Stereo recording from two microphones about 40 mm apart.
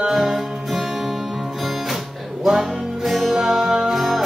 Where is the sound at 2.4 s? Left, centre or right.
Centre.